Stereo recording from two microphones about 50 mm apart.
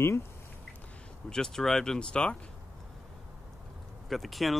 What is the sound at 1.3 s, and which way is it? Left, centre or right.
Speech, centre.